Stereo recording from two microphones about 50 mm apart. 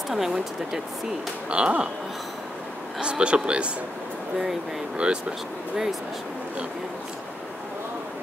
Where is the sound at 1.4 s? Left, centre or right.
Right.